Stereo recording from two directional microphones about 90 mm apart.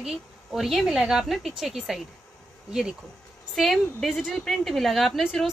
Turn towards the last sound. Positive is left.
turn(degrees=0)  # may be behind; listen again after turning